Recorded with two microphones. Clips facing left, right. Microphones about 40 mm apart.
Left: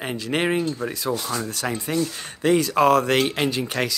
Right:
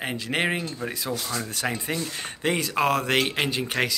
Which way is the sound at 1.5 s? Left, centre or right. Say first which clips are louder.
Left 2 dB; right.